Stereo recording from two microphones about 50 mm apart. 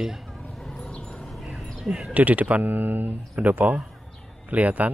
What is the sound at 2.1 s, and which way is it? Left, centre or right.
Speech, right.